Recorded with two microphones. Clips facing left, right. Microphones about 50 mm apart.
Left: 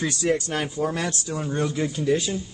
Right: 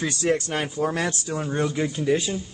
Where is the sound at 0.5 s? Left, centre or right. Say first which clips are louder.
Even; right.